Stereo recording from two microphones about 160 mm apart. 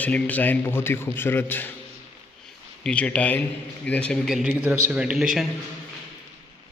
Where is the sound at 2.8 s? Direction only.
5° left (ahead or behind).